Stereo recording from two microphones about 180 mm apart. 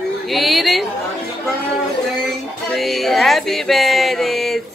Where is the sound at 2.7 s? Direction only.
Centre (ahead or behind).